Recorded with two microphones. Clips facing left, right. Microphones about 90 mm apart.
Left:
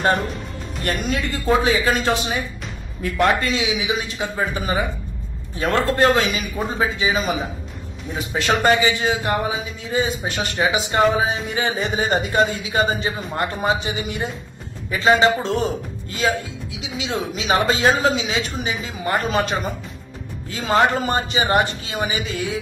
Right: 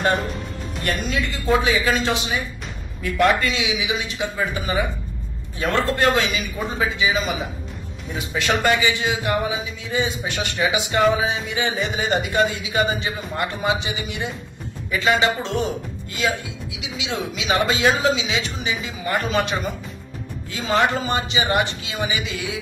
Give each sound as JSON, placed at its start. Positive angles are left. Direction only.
{"t": 0.8, "sound": "speech", "side_deg": 45}
{"t": 3.4, "sound": "speech", "side_deg": 40}